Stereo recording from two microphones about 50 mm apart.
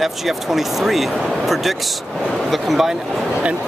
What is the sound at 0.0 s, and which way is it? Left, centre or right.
Speech, centre.